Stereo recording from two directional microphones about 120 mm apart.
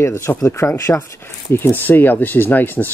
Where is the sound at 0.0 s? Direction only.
20° left (ahead or behind).